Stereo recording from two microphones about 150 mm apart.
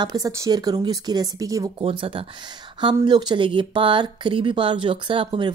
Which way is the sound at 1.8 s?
35° right (ahead or behind).